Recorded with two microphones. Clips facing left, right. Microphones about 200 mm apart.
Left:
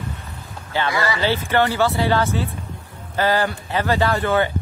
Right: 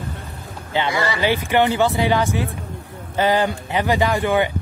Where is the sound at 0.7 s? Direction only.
20° right (ahead or behind).